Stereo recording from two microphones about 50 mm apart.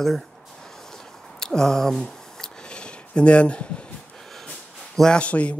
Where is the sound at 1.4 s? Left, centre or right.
Centre.